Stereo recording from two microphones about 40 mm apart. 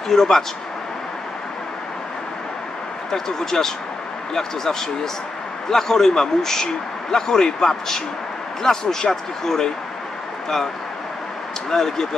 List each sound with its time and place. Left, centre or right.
0.1 s speech: centre
3.1 s speech: centre
11.7 s speech: centre